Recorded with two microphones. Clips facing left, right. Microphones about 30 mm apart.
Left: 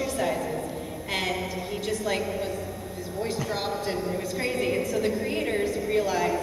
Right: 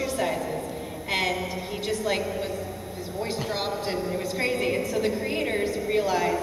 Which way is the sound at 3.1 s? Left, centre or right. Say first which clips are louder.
Even; right.